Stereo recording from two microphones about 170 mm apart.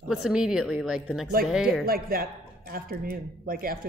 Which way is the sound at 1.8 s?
60° right (ahead or behind).